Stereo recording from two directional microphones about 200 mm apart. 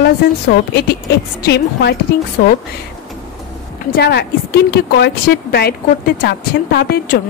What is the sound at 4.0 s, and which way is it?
Speech, 55° left (ahead or behind).